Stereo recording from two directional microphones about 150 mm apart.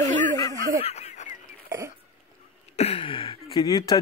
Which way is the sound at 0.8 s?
45° left (ahead or behind).